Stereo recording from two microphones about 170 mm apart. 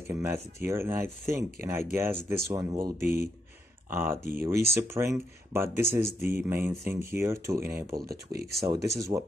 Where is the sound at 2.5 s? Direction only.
25° right (ahead or behind).